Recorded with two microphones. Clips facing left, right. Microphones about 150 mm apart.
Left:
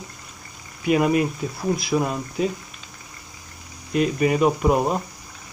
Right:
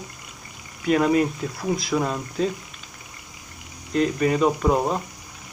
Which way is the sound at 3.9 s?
15° left (ahead or behind).